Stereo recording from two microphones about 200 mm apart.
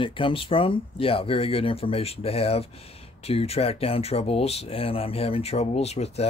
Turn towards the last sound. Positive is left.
turn(degrees=30)  # may be behind; listen again after turning